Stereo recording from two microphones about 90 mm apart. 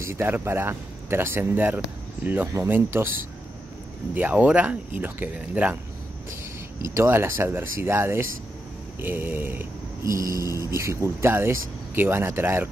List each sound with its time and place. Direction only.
0.0 s speech: 30° right (ahead or behind)
4.1 s speech: 20° right (ahead or behind)
6.8 s speech: 30° right (ahead or behind)
10.0 s a sound: 35° right (ahead or behind)
10.5 s speech: 40° left (ahead or behind)
10.8 s speech: 30° right (ahead or behind)